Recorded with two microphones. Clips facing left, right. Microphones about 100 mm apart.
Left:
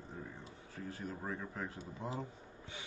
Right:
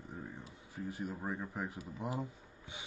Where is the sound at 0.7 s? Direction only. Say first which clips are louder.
Right 3 dB; 15° right (ahead or behind).